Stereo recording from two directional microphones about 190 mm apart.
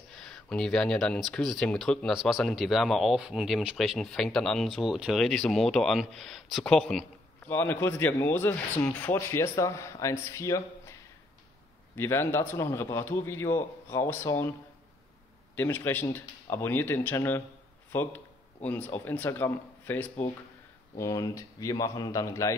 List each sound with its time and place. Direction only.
0.3 s a man's voice: 5° left (ahead or behind)
15.5 s a man's voice: 10° left (ahead or behind)
17.9 s a sound: 10° left (ahead or behind)
19.0 s a man's voice: 10° left (ahead or behind)